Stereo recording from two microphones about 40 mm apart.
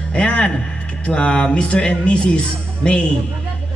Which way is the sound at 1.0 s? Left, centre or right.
Left.